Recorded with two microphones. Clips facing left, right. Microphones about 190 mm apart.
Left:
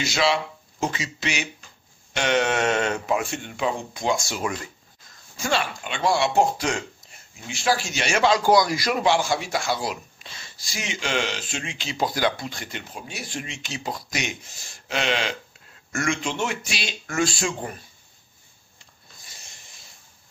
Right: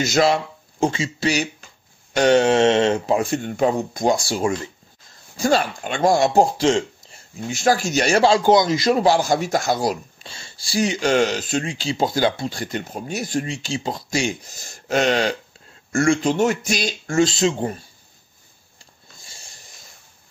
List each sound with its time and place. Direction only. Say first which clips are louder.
0.0 s speech: right 5 dB; 45° right (ahead or behind)
0.7 s speech: right 7 dB; 30° right (ahead or behind)
9.0 s speech: right 4 dB; 40° right (ahead or behind)
17.1 s speech: right 7 dB; 25° right (ahead or behind)
19.1 s a sound: right 3 dB; 30° right (ahead or behind)